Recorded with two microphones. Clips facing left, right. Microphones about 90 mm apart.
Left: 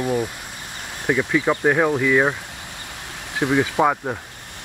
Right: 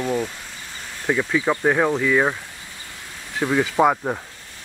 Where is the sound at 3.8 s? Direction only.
5° right (ahead or behind).